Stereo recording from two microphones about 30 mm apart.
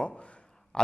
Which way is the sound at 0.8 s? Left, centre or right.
Left.